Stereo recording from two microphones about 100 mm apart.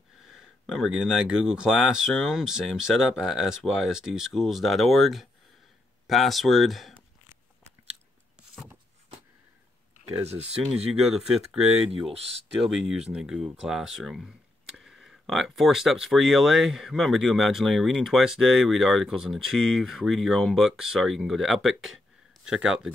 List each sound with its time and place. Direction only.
0.2 s speech: 5° right (ahead or behind)
10.7 s speech: 5° right (ahead or behind)